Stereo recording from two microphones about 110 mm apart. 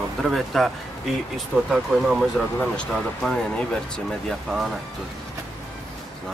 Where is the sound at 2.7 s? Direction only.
5° left (ahead or behind).